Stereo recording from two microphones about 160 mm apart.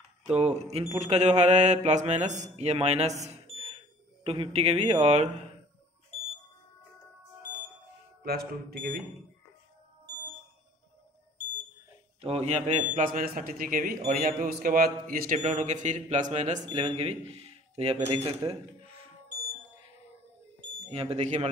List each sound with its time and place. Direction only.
0.2 s a man's voice: 45° right (ahead or behind)
4.2 s a man's voice: 35° right (ahead or behind)
8.2 s speech: 70° right (ahead or behind)
12.2 s a man's voice: 40° right (ahead or behind)
16.6 s speech: 35° right (ahead or behind)
18.2 s speech: 20° right (ahead or behind)
20.9 s a man's voice: 40° right (ahead or behind)